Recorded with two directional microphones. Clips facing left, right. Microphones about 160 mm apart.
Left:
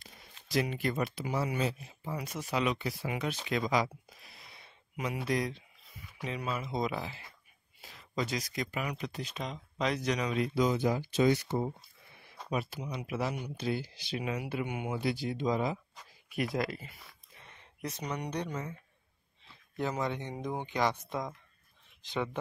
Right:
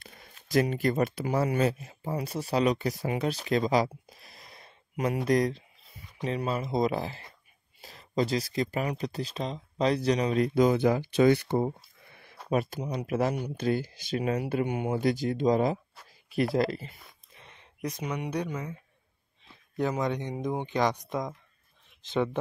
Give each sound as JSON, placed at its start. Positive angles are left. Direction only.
{"t": 0.0, "sound": "speech", "side_deg": -50}
{"t": 2.0, "sound": "speech", "side_deg": -35}
{"t": 16.5, "sound": "speech", "side_deg": -30}
{"t": 17.4, "sound": "speech", "side_deg": -20}